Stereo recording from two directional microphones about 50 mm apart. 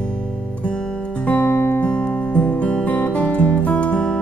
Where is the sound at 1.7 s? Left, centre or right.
Left.